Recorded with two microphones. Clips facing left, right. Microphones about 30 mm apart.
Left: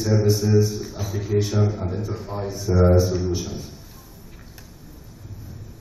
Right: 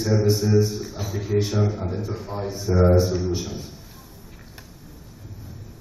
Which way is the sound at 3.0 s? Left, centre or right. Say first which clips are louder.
Even; centre.